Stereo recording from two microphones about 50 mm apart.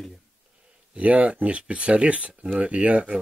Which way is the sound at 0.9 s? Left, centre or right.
Right.